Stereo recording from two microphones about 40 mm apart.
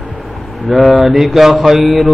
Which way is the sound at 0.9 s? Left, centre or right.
Centre.